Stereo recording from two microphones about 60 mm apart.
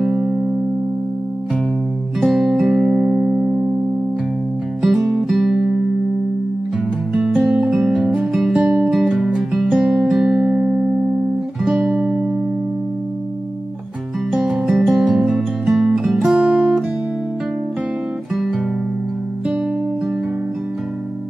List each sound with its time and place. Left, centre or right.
0.0 s music: centre
2.2 s music: centre
4.8 s music: centre
7.2 s guitar: centre
7.5 s music: centre
8.5 s music: centre
8.9 s music: centre
14.3 s music: centre
16.3 s music: centre
18.3 s guitar: centre